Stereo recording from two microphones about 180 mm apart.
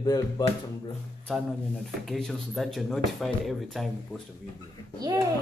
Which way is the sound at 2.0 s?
Centre (ahead or behind).